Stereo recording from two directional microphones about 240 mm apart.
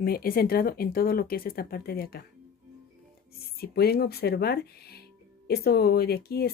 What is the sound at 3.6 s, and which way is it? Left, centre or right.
Speech, left.